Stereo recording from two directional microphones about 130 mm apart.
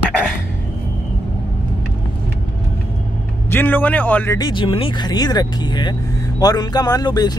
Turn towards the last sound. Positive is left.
turn(degrees=30)  # may be behind; listen again after turning